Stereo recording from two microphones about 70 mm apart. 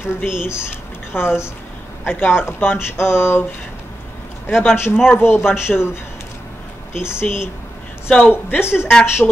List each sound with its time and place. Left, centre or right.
0.0 s speech: left
4.5 s speech: left
4.9 s speech: centre
5.2 s speech: left
5.7 s speech: centre
6.9 s speech: left